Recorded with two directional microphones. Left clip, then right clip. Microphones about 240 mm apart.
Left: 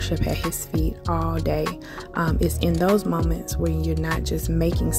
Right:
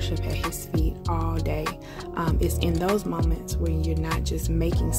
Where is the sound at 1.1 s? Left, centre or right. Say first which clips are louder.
Left 5 dB; left.